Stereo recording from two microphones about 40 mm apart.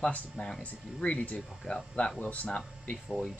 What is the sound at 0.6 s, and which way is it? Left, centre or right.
Speech, left.